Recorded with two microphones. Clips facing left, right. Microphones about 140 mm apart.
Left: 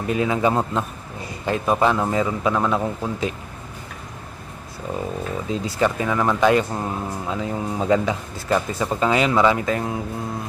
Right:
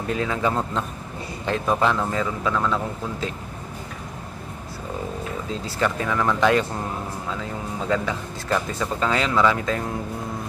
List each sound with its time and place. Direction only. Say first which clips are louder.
0.0 s a man's voice: left 4 dB; 10° left (ahead or behind)
5.5 s a man's voice: left 3 dB; 15° left (ahead or behind)